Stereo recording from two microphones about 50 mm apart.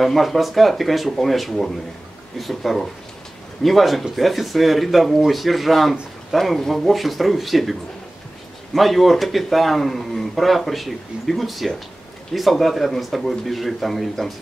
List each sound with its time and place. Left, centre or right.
0.0 s speech: centre
8.7 s speech: centre